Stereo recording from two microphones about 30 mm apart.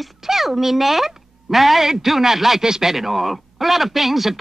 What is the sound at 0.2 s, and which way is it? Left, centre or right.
A man's voice, centre.